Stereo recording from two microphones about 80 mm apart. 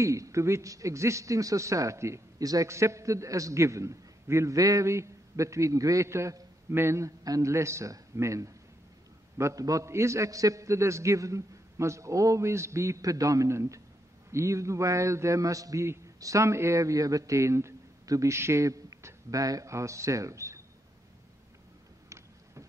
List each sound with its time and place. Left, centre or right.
0.0 s a man's voice: right
7.2 s a man's voice: right